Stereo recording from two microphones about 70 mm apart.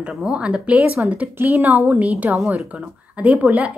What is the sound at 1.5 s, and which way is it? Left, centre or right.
Speech, right.